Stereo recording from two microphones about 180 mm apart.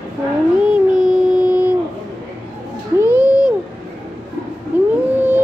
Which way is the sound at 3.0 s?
10° right (ahead or behind).